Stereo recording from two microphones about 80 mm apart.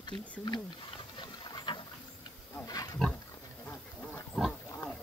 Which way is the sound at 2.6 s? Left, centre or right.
Left.